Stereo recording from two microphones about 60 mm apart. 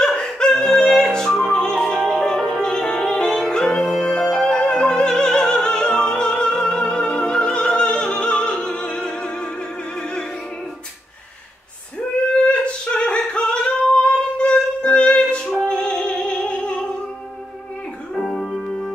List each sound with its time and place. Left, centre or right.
0.0 s opera: centre
2.0 s music: centre
9.9 s opera: centre
12.0 s singing: centre
15.7 s music: centre
18.1 s music: centre